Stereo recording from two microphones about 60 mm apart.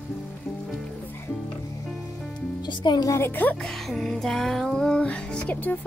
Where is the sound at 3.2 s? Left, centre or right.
Left.